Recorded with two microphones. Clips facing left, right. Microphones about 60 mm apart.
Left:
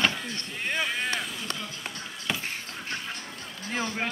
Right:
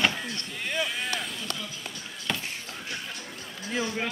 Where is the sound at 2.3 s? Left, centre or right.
Centre.